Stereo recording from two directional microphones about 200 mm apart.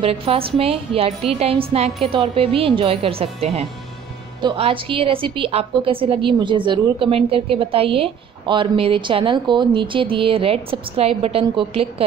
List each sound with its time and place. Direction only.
0.0 s a woman's voice: 30° right (ahead or behind)